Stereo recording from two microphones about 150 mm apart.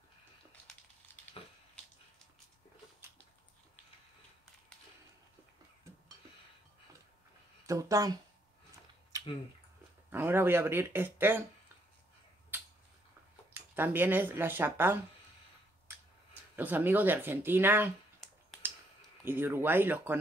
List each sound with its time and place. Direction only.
7.6 s speech: 25° right (ahead or behind)
10.0 s speech: 15° right (ahead or behind)
13.5 s speech: 10° right (ahead or behind)
16.5 s speech: 10° right (ahead or behind)
18.2 s finger snapping: centre (ahead or behind)
19.2 s speech: 15° right (ahead or behind)